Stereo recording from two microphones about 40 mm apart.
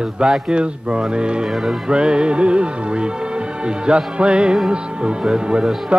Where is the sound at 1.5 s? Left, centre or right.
Centre.